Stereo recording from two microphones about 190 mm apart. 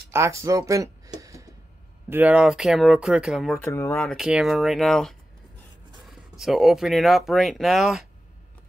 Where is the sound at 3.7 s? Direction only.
15° left (ahead or behind).